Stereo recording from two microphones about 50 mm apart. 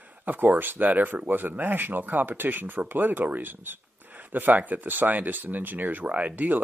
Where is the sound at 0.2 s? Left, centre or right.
Right.